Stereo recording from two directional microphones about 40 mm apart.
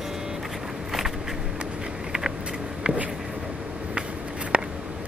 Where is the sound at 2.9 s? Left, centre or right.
Right.